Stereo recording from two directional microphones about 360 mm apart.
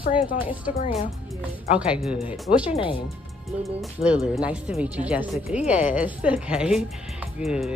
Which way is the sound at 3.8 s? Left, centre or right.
Centre.